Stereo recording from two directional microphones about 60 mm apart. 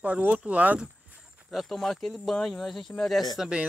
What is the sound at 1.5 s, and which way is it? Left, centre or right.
Speech, centre.